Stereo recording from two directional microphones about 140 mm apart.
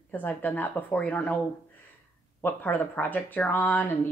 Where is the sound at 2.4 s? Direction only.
15° left (ahead or behind).